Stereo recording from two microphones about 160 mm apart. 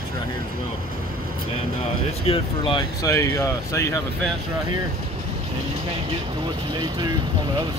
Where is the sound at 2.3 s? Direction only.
30° left (ahead or behind).